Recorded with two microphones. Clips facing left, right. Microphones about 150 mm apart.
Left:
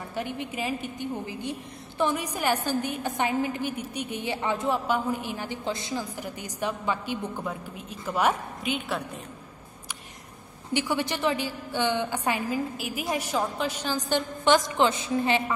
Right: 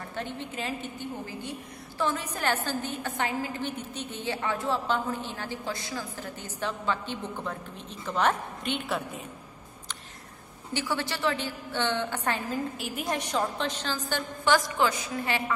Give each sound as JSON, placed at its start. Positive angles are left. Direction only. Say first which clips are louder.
{"t": 0.1, "sound": "a woman's voice", "louder": "left 4 dB", "side_deg": 10}
{"t": 10.7, "sound": "a woman's voice", "louder": "left 4 dB", "side_deg": 15}